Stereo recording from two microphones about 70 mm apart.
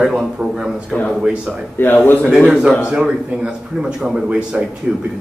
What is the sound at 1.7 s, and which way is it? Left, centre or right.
Speech, left.